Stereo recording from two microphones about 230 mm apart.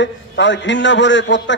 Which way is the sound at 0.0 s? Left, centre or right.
Left.